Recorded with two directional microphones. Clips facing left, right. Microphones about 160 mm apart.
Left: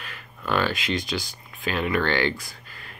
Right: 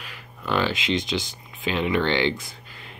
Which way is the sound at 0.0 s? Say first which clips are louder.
Left 1 dB; 15° right (ahead or behind).